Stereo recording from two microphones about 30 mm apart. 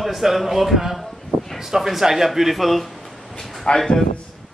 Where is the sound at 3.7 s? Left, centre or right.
Left.